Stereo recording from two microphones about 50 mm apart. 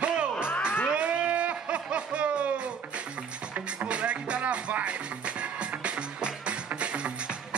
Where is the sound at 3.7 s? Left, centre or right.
Right.